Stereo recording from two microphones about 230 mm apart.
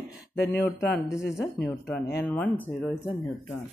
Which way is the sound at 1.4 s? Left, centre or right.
Centre.